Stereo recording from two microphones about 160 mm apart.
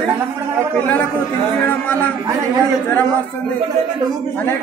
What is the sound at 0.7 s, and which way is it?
Speech, 10° left (ahead or behind).